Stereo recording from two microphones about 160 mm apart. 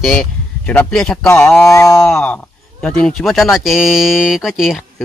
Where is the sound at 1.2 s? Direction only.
15° left (ahead or behind).